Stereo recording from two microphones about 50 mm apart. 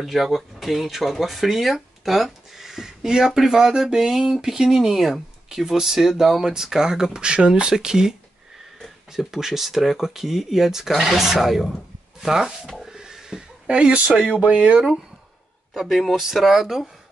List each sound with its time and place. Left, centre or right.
0.0 s speech: centre; by 14.8 s right
15.7 s speech: centre